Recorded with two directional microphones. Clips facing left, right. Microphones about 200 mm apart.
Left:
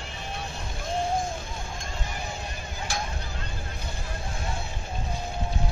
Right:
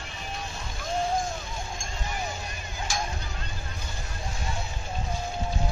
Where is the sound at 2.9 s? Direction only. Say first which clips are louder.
Right 1 dB; 60° left (ahead or behind).